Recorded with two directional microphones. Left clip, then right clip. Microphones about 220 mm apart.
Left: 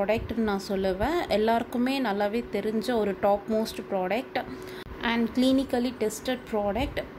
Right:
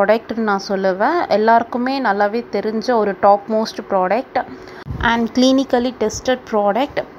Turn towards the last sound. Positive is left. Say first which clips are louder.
# right 12 dB
turn(degrees=-15)  # may be behind; listen again after turning